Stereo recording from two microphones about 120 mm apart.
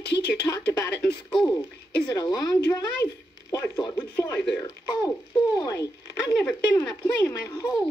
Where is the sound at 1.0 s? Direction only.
Centre (ahead or behind).